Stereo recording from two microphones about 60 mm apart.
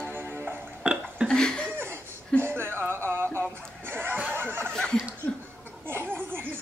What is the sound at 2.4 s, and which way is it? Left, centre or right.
Music, right.